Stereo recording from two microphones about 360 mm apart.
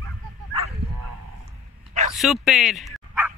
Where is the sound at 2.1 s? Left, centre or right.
Centre.